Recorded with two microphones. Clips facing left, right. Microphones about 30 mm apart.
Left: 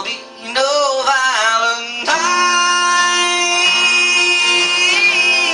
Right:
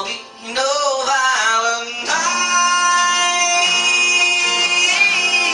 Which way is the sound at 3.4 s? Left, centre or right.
Left.